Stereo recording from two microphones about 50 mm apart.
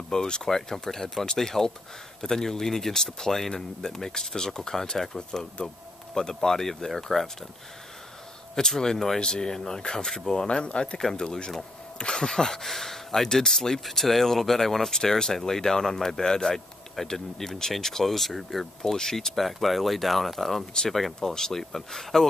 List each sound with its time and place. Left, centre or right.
0.1 s speech: centre
8.5 s speech: centre
11.0 s speech: centre
11.2 s speech: centre